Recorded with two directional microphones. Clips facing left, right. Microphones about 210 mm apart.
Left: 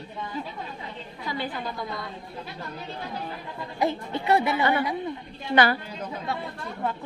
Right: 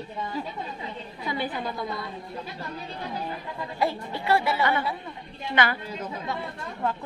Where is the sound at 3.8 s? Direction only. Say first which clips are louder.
Left 2 dB; 20° left (ahead or behind).